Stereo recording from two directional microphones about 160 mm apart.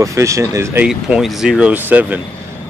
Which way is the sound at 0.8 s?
5° right (ahead or behind).